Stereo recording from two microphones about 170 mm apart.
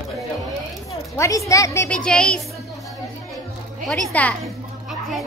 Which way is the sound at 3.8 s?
5° left (ahead or behind).